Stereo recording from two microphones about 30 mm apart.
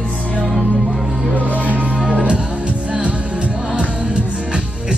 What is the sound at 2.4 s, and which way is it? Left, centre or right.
Music, right.